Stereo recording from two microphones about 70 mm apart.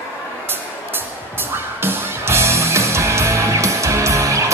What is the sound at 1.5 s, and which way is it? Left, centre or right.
Music, right.